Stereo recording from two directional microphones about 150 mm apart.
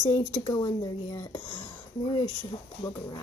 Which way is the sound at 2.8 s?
25° left (ahead or behind).